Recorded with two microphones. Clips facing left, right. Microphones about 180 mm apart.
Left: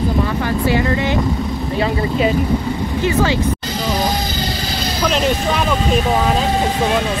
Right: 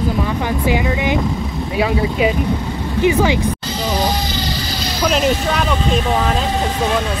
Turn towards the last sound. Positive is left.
turn(degrees=0)  # may be behind; listen again after turning